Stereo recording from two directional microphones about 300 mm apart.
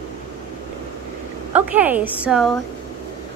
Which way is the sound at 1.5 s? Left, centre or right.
Centre.